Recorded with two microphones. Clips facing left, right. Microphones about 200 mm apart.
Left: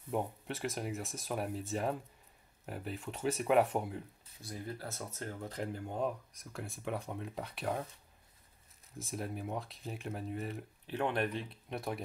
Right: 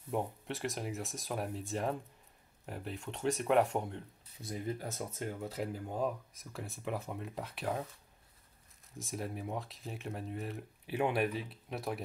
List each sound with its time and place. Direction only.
0.1 s speech: centre (ahead or behind)
4.4 s speech: 20° right (ahead or behind); by 7.9 s centre (ahead or behind)
8.9 s speech: centre (ahead or behind)